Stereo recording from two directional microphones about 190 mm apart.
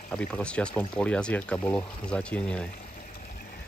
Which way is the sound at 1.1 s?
5° left (ahead or behind).